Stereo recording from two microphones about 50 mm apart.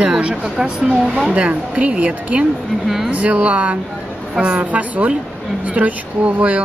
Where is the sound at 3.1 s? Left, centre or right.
Right.